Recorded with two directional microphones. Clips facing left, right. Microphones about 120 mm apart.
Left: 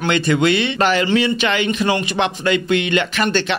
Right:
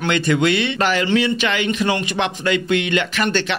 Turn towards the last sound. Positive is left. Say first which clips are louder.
# left 1 dB
turn(degrees=25)  # may be behind; listen again after turning